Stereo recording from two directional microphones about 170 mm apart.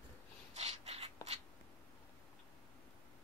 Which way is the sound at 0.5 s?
40° right (ahead or behind).